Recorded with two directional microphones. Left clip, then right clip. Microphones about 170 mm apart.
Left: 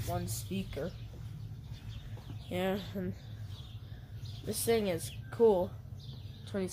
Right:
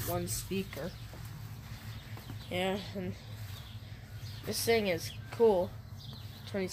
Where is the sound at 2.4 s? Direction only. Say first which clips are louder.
Right 1 dB; 15° left (ahead or behind).